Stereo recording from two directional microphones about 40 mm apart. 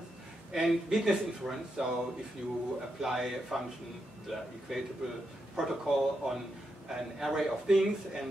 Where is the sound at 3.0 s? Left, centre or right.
Centre.